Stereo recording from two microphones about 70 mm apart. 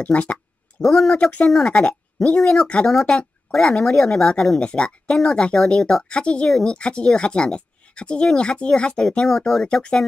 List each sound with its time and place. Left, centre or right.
0.0 s a sound: centre
0.8 s speech: centre
1.1 s speech: centre